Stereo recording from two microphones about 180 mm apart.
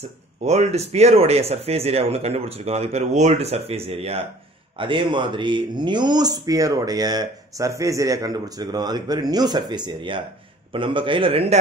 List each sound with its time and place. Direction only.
0.4 s speech: 40° right (ahead or behind)